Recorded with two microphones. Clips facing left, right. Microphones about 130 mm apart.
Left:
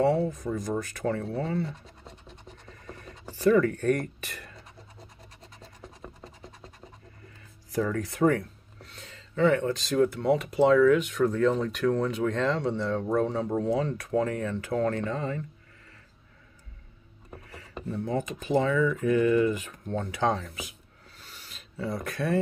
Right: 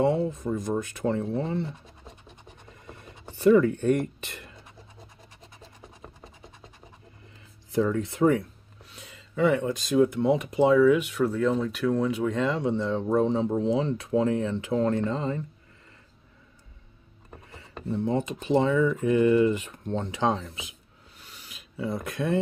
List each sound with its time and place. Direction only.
0.0 s speech: 15° right (ahead or behind)
2.9 s a sound: 15° right (ahead or behind)
3.8 s speech: 20° right (ahead or behind)
7.8 s speech: 25° right (ahead or behind)
17.5 s speech: 25° right (ahead or behind)
21.2 s a sound: 5° right (ahead or behind)
21.9 s speech: 20° right (ahead or behind)